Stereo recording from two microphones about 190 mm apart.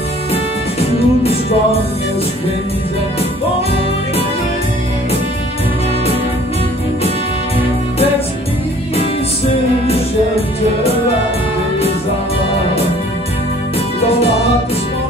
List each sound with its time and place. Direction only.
0.3 s music: 30° left (ahead or behind)